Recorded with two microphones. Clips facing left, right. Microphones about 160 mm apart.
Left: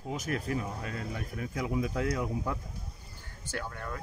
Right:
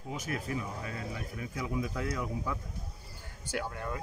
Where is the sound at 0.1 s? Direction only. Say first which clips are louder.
Left 3 dB; 40° left (ahead or behind).